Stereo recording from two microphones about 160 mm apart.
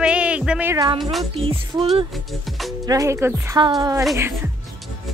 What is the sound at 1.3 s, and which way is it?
Speech, 35° right (ahead or behind).